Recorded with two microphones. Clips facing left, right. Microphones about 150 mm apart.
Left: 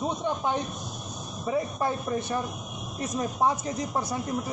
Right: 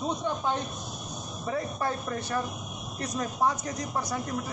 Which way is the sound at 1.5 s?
20° left (ahead or behind).